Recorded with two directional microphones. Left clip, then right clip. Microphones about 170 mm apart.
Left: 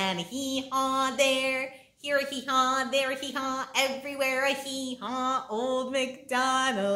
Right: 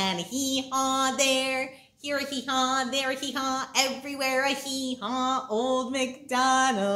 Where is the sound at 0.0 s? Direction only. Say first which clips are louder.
Right 2 dB; centre (ahead or behind).